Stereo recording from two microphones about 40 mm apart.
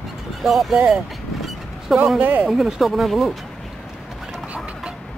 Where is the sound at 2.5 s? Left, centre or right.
Centre.